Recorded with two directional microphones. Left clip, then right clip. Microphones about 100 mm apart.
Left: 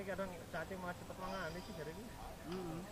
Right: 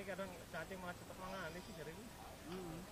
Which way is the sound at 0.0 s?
20° right (ahead or behind).